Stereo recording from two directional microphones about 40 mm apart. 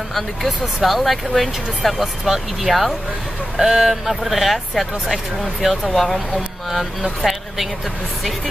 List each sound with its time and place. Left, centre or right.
0.1 s speech: centre